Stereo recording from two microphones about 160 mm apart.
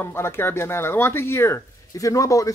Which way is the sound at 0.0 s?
15° left (ahead or behind).